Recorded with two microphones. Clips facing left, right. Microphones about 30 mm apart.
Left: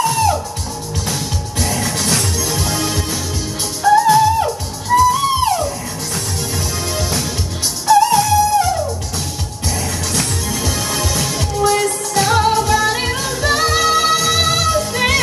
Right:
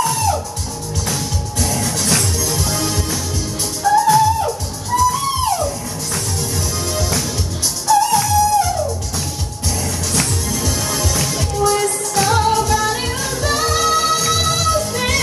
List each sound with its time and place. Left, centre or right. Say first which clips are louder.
0.0 s music: left 2 dB; centre
1.6 s music: left 1 dB; centre
7.0 s music: even; centre
10.5 s music: left 1 dB; centre